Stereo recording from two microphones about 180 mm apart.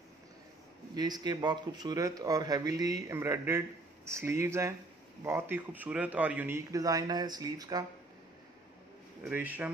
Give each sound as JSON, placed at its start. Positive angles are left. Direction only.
{"t": 0.9, "sound": "a man's voice", "side_deg": -20}
{"t": 9.2, "sound": "a man's voice", "side_deg": -10}